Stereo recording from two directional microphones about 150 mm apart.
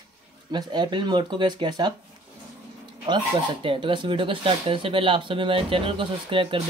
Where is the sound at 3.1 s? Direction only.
30° right (ahead or behind).